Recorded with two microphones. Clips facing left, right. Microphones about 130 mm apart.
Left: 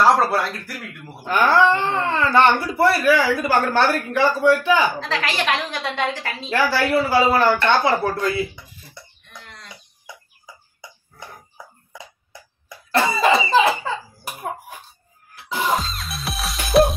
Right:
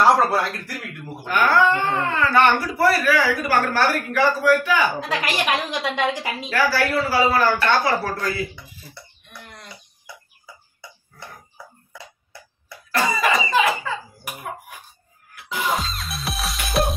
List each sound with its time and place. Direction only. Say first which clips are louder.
0.0 s speech: even; centre (ahead or behind)
1.2 s speech: left 2 dB; 25° left (ahead or behind)
4.9 s a woman's voice: even; 10° right (ahead or behind)
6.5 s speech: left 2 dB; 25° left (ahead or behind)
10.4 s throat clearing: left 1 dB; 15° left (ahead or behind)
15.7 s music: left 2 dB; centre (ahead or behind)